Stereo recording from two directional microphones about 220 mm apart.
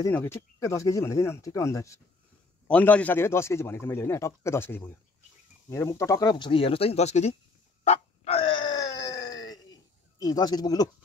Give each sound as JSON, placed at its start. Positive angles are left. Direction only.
{"t": 0.0, "sound": "a man's voice", "side_deg": 10}
{"t": 7.8, "sound": "groan", "side_deg": 30}
{"t": 10.1, "sound": "a man's voice", "side_deg": 15}